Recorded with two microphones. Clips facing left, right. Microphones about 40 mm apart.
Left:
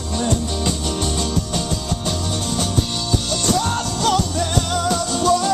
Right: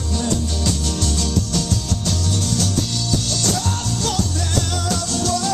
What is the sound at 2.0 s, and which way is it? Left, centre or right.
Music, left.